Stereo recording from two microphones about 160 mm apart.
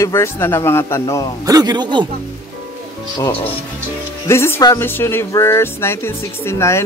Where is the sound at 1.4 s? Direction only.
25° right (ahead or behind).